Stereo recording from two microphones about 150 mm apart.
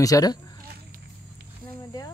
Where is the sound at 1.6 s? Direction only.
25° left (ahead or behind).